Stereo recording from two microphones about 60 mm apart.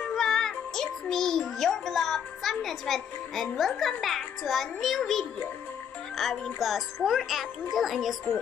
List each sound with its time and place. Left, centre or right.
0.1 s music: centre
4.0 s a child's voice: centre